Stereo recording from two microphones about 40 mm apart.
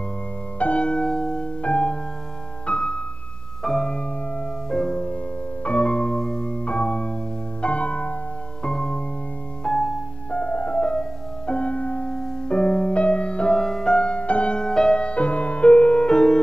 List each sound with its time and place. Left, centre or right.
0.6 s music: left
3.6 s music: centre; by 8.2 s left
8.6 s music: centre
10.3 s music: left
12.1 s music: left
13.6 s music: centre
14.1 s music: left